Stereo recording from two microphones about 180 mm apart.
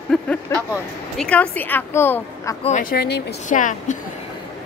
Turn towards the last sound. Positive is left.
turn(degrees=45)  # may be behind; listen again after turning